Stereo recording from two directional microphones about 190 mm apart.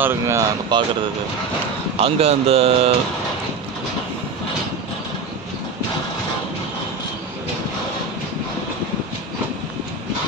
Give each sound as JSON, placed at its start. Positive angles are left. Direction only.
{"t": 0.0, "sound": "speech", "side_deg": -15}
{"t": 2.0, "sound": "speech", "side_deg": -30}